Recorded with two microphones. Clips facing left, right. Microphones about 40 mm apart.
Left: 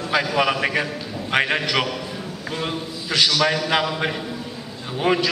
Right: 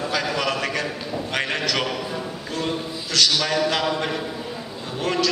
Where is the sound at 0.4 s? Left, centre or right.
Centre.